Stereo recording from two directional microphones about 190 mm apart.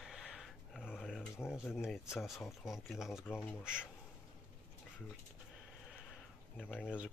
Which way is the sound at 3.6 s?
5° right (ahead or behind).